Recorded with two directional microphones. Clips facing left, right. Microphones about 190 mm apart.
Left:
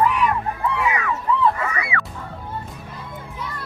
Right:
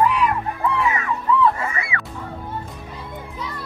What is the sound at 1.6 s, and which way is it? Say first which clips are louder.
Goose: left 1 dB; 25° right (ahead or behind).